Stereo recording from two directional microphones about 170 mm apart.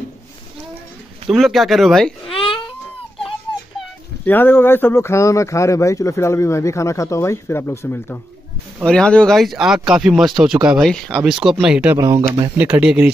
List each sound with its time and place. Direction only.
1.3 s speech: centre (ahead or behind)
2.3 s baby cry: 30° left (ahead or behind)
4.3 s a man's voice: 10° left (ahead or behind); by 12.0 s 5° right (ahead or behind)
12.0 s speech: 20° right (ahead or behind)